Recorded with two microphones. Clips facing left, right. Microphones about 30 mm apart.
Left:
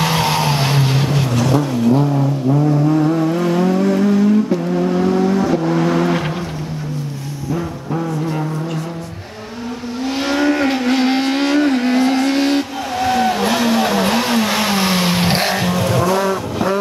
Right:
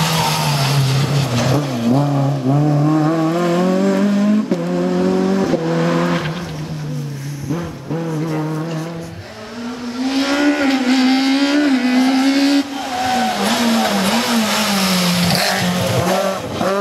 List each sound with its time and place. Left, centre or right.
0.0 s vehicle: centre
1.5 s vehicle: right; by 6.2 s centre
10.0 s vehicle: centre
10.3 s vehicle: centre